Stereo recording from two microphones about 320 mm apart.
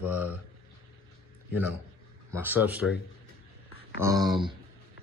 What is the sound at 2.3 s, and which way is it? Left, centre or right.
Speech, centre.